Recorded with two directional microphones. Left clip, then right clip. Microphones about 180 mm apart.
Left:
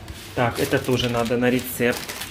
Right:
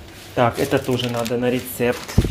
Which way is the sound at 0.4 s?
20° right (ahead or behind).